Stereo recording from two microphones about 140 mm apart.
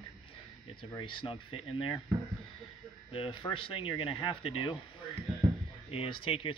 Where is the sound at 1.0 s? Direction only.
35° left (ahead or behind).